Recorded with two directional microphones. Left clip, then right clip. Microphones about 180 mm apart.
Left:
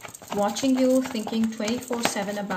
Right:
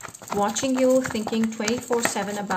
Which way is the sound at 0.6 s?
35° right (ahead or behind).